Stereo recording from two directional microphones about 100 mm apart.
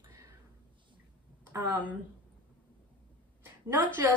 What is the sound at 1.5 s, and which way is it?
Speech, 20° right (ahead or behind).